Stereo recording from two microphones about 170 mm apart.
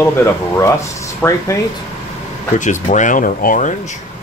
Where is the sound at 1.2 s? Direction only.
15° left (ahead or behind).